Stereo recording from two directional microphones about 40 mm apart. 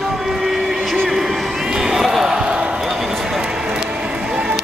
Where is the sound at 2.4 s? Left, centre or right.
Right.